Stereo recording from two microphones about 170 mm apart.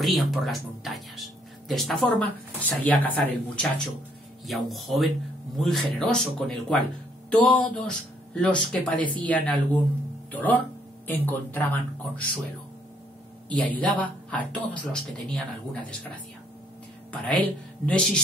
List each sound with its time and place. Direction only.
0.0 s speech: centre (ahead or behind)
13.5 s speech: 10° left (ahead or behind)
17.1 s speech: 10° left (ahead or behind)